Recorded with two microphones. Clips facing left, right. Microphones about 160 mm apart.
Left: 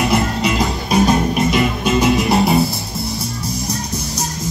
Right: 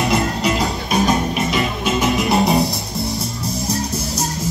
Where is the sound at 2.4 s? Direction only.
20° right (ahead or behind).